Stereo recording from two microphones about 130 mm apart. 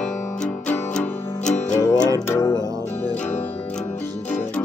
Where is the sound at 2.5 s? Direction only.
30° right (ahead or behind).